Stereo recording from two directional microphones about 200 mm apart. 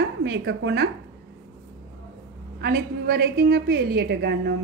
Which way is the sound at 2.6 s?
55° right (ahead or behind).